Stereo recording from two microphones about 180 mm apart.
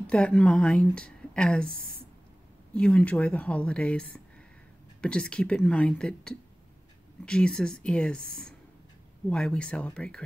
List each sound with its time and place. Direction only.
0.0 s a woman's voice: 5° left (ahead or behind)
1.7 s a woman's voice: 55° right (ahead or behind)
2.7 s a woman's voice: 5° left (ahead or behind)